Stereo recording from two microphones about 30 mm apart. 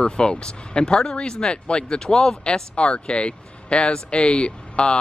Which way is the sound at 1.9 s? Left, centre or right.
Centre.